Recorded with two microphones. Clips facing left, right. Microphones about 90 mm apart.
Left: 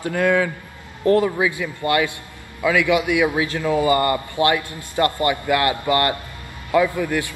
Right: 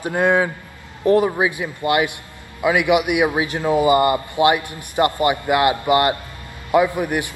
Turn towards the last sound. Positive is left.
turn(degrees=-20)  # may be behind; listen again after turning